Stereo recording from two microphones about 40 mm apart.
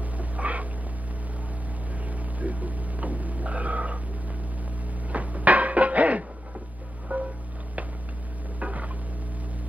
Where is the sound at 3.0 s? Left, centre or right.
Right.